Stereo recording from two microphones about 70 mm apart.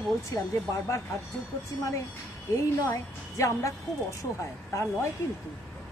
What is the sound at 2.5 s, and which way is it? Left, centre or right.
Speech, left.